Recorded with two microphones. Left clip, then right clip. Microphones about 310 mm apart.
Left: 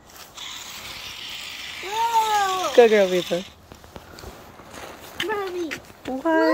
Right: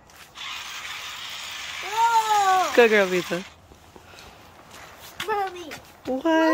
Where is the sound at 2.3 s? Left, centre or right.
Right.